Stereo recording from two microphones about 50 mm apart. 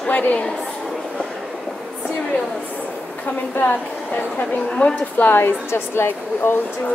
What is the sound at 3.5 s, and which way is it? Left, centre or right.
Speech, left.